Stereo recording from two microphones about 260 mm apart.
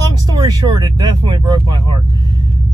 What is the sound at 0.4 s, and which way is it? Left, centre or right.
Speech, centre.